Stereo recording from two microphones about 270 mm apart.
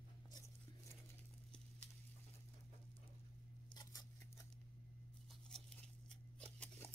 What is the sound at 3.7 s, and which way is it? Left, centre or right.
Scissors, centre.